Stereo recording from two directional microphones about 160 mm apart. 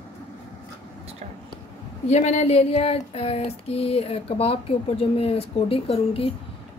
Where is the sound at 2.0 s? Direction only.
45° left (ahead or behind).